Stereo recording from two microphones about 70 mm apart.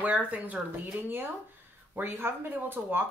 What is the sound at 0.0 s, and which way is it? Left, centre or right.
Speech, right.